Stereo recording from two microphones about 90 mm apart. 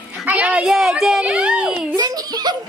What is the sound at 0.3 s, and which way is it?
Speech, 15° right (ahead or behind).